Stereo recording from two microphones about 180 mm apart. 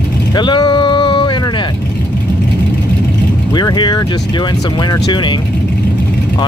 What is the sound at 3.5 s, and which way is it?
Speech, 25° left (ahead or behind).